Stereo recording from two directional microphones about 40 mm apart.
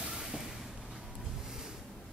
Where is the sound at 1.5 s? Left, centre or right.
Centre.